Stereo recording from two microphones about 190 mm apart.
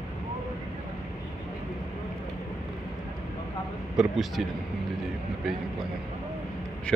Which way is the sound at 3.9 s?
Centre (ahead or behind).